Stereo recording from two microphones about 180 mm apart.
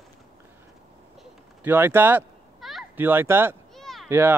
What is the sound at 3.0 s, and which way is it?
Speech, 10° right (ahead or behind).